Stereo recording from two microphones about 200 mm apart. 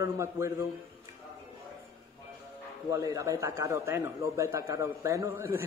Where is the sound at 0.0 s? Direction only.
15° right (ahead or behind).